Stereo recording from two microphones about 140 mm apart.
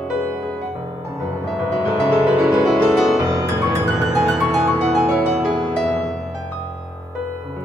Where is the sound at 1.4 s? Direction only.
Centre (ahead or behind).